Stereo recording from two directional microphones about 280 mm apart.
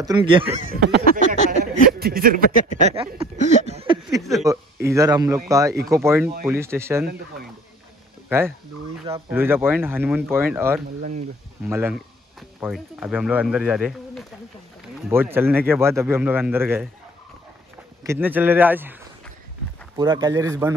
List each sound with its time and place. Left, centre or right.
0.0 s speech: centre
0.7 s a sound: right
2.0 s speech: right
2.9 s speech: centre
4.2 s speech: centre
4.8 s speech: centre
8.3 s speech: centre
11.0 s speech: right
11.6 s speech: centre
18.0 s speech: centre
20.0 s speech: centre